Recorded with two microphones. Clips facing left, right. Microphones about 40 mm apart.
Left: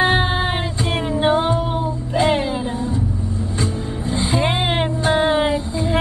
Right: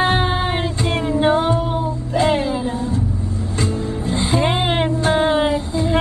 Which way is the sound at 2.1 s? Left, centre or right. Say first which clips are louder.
Even; left.